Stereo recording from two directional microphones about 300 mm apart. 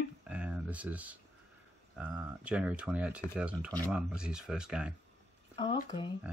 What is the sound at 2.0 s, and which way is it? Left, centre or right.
Speech, centre.